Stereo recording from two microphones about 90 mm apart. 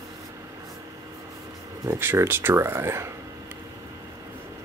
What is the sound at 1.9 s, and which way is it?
Speech, 25° right (ahead or behind).